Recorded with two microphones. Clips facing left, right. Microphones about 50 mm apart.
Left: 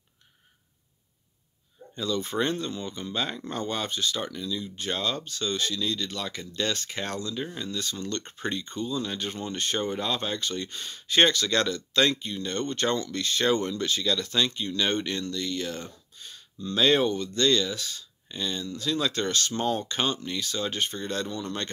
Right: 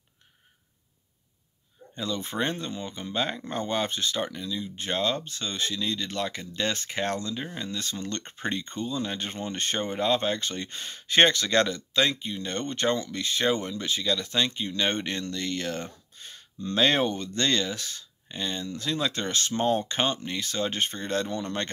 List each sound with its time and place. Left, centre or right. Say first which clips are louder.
2.0 s speech: left 2 dB; right
11.9 s speech: left 1 dB; centre; by 21.6 s right